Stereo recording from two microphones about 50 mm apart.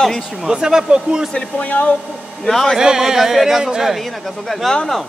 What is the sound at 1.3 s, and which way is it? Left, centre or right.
Speech, left.